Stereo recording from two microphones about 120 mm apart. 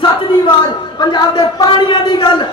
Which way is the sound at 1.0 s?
35° left (ahead or behind).